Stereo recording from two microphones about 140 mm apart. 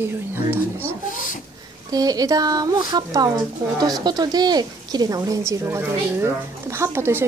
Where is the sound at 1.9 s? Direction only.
25° right (ahead or behind).